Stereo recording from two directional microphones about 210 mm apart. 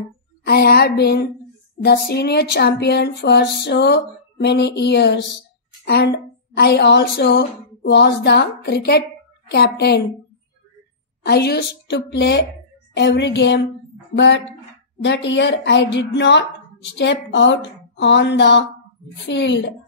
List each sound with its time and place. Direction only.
0.5 s a woman's voice: 50° left (ahead or behind)
11.2 s a woman's voice: 50° left (ahead or behind)